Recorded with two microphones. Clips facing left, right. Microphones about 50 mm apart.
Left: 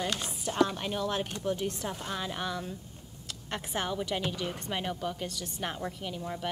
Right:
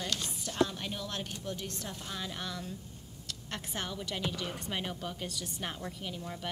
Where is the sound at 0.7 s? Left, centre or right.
Centre.